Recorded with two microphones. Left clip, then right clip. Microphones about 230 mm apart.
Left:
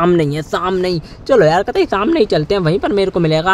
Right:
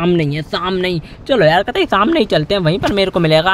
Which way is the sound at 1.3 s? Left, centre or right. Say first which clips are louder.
Left 1 dB; right.